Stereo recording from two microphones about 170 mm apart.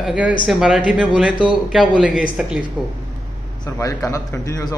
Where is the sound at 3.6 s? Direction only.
20° left (ahead or behind).